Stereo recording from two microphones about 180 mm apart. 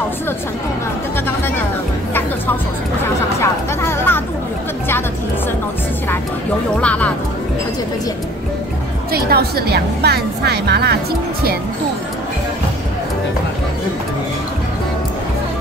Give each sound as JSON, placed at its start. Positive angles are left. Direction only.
{"t": 3.3, "sound": "music", "side_deg": 15}
{"t": 6.8, "sound": "speech", "side_deg": 5}
{"t": 9.1, "sound": "a woman's voice", "side_deg": -60}